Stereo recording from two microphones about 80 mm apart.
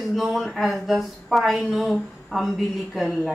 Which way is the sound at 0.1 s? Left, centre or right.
Centre.